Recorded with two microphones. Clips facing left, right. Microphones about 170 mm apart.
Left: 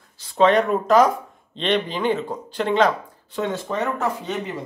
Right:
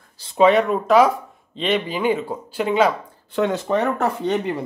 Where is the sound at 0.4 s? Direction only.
5° right (ahead or behind).